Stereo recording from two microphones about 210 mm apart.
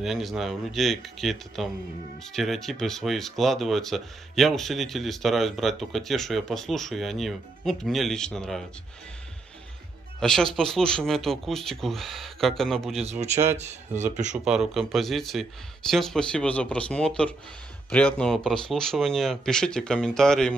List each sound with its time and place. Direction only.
0.0 s speech: centre (ahead or behind)
10.2 s speech: centre (ahead or behind)
13.0 s speech: 30° right (ahead or behind)
14.4 s speech: centre (ahead or behind)